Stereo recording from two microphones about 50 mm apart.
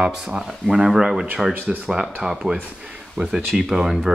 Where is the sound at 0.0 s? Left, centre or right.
Centre.